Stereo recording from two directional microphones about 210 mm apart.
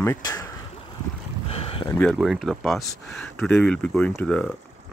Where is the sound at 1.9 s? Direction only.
5° left (ahead or behind).